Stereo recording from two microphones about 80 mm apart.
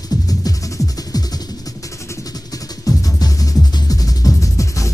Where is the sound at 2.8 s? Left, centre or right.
Left.